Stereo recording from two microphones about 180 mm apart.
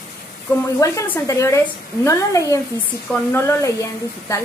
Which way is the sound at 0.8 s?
15° left (ahead or behind).